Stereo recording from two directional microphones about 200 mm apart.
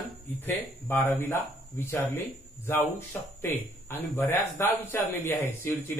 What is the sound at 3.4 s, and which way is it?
Speech, 10° left (ahead or behind).